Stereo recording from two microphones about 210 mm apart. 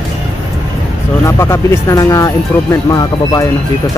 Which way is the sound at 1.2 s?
10° left (ahead or behind).